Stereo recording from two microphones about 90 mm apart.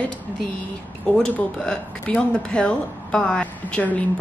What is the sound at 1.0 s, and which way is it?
Speech, 10° left (ahead or behind).